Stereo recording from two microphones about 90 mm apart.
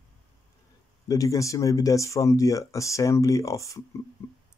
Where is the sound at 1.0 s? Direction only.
40° left (ahead or behind).